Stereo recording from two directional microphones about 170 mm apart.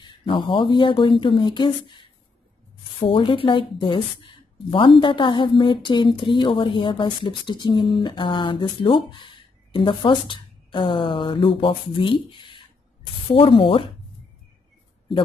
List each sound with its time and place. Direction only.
0.0 s speech: 30° left (ahead or behind)